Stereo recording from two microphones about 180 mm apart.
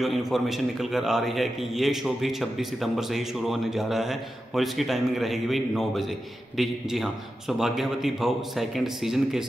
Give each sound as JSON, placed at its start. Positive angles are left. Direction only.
{"t": 0.0, "sound": "a man's voice", "side_deg": 0}